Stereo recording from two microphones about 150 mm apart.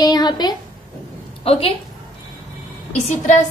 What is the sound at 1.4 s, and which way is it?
Speech, 40° left (ahead or behind).